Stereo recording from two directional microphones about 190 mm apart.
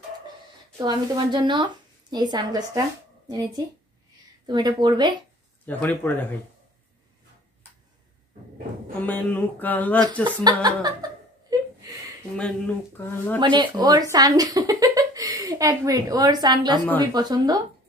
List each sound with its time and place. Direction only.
0.7 s a woman's voice: 20° right (ahead or behind)
5.7 s speech: 10° left (ahead or behind)
9.0 s speech: 10° left (ahead or behind)
10.6 s a woman's voice: 20° right (ahead or behind)
11.5 s a sound: 20° right (ahead or behind)
12.4 s speech: 10° left (ahead or behind)
13.4 s a woman's voice: 25° right (ahead or behind)